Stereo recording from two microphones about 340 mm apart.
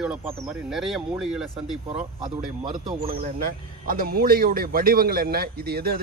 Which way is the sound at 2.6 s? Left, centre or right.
Centre.